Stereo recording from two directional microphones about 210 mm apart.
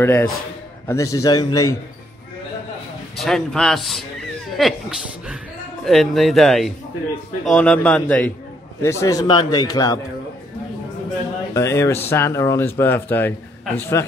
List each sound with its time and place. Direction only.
0.0 s speech: 10° left (ahead or behind)
3.2 s a man's voice: centre (ahead or behind); by 9.9 s 20° left (ahead or behind)
11.5 s speech: 15° left (ahead or behind)